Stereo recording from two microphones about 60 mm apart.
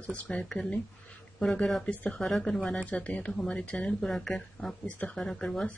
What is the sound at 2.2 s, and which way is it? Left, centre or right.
Speech, centre.